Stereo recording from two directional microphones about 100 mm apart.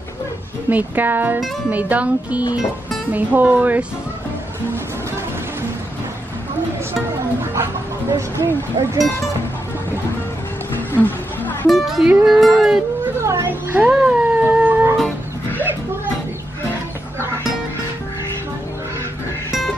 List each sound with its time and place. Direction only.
0.7 s speech: 15° right (ahead or behind)
8.4 s speech: 30° right (ahead or behind)
10.7 s music: 20° left (ahead or behind)
11.6 s music: centre (ahead or behind)
13.2 s a sound: 30° right (ahead or behind)